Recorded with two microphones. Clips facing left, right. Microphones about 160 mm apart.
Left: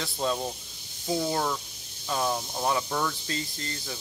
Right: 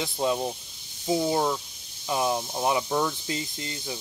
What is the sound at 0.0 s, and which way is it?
Speech, 15° right (ahead or behind).